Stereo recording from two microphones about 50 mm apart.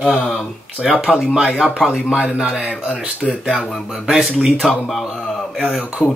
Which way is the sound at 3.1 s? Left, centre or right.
Left.